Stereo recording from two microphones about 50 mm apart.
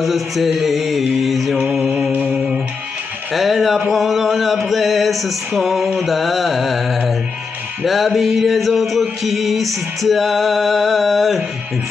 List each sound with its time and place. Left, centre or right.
0.0 s mantra: centre
1.7 s mantra: centre
2.3 s music: right
3.3 s a sound: centre
5.6 s music: centre
5.9 s a sound: centre
7.8 s music: centre